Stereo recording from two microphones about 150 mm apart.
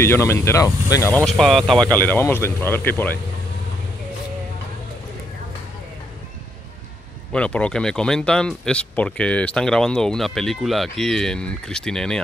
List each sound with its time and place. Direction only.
0.0 s speech: 15° left (ahead or behind)
1.2 s speech: centre (ahead or behind)
7.3 s speech: 10° left (ahead or behind)